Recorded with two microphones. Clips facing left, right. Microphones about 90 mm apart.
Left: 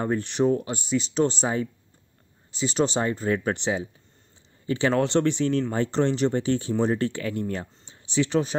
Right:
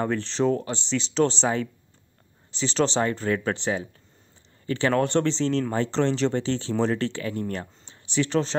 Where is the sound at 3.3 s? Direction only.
20° left (ahead or behind).